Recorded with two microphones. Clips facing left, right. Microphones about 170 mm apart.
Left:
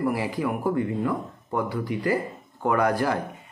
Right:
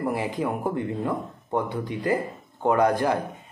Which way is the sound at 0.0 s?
20° right (ahead or behind).